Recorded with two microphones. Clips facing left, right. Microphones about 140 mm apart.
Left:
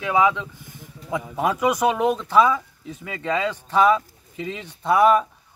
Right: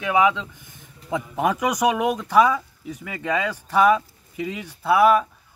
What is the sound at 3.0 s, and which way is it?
Speech, 20° left (ahead or behind).